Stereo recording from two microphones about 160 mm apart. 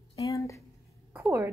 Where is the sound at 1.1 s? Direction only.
10° right (ahead or behind).